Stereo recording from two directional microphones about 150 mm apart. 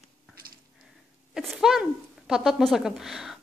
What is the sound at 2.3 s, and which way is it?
A woman's voice, centre (ahead or behind).